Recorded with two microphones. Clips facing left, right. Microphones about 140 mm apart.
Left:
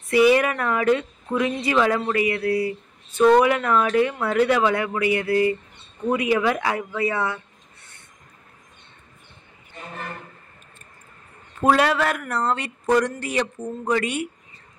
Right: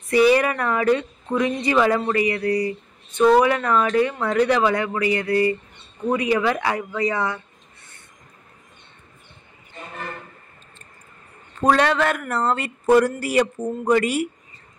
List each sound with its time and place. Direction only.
0.1 s speech: 5° left (ahead or behind)
11.6 s speech: 5° left (ahead or behind)